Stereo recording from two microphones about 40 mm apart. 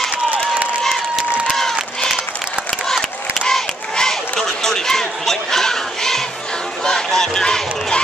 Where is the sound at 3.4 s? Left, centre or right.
Centre.